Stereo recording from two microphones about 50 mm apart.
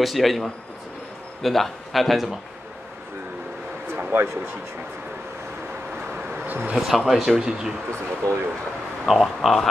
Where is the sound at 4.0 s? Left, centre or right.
Right.